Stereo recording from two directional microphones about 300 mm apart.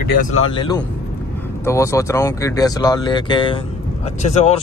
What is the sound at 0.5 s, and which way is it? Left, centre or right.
Speech, centre.